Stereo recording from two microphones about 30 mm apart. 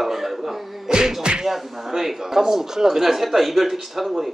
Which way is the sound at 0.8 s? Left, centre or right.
Right.